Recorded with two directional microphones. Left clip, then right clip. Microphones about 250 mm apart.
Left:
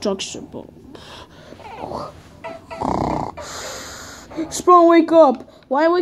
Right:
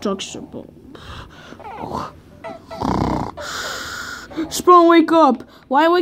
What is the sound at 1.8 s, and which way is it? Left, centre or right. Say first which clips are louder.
Dog: right 2 dB; right.